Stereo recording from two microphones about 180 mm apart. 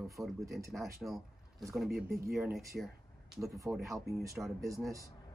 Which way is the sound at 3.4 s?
15° right (ahead or behind).